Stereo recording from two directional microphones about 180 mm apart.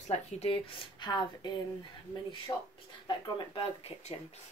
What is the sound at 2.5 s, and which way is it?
Speech, 25° left (ahead or behind).